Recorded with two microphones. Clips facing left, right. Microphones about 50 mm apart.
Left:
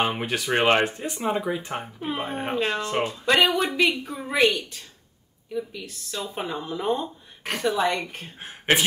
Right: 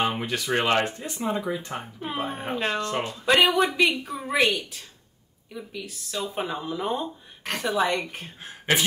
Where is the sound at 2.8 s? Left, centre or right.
Centre.